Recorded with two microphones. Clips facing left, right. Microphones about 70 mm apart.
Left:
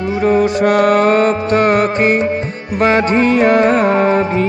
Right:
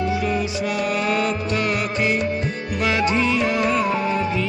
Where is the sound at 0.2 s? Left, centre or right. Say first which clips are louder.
Left 11 dB; left.